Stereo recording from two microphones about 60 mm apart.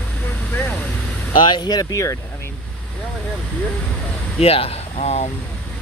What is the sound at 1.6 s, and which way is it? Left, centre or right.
Speech, left.